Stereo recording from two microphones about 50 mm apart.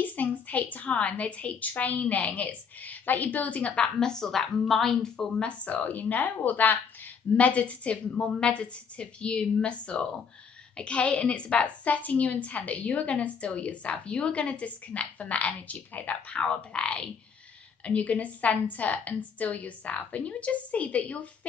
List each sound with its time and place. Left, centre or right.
0.0 s a woman's voice: left; by 5.1 s centre
5.1 s speech: centre
5.7 s a woman's voice: left
16.3 s a woman's voice: left